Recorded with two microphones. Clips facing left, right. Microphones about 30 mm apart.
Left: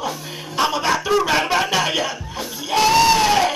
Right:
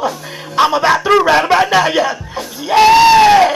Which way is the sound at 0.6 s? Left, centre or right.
Right.